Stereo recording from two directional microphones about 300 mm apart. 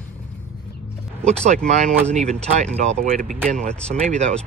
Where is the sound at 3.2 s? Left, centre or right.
Centre.